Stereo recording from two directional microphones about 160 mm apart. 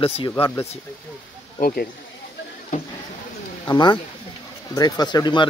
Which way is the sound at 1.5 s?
65° left (ahead or behind).